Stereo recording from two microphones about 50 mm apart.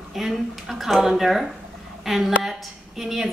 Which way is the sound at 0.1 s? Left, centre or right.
Centre.